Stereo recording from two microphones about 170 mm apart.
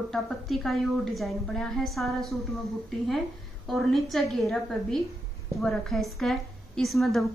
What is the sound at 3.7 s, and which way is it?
A woman's voice, centre (ahead or behind).